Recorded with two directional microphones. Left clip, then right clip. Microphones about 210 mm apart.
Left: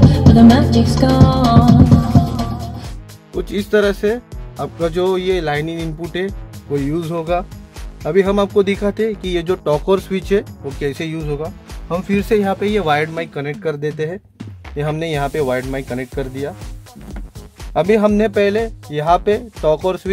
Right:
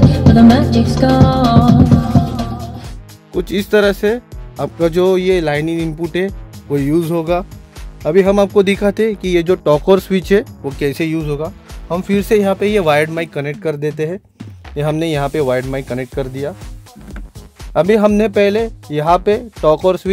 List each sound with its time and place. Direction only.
0.0 s music: 10° left (ahead or behind)
3.3 s speech: 45° right (ahead or behind)
17.7 s speech: 40° right (ahead or behind)